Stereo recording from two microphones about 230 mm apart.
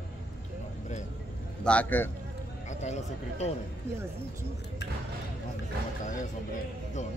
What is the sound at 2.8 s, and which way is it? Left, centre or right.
Speech, left.